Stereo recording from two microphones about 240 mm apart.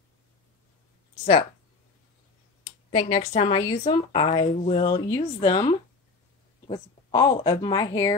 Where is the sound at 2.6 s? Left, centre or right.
Left.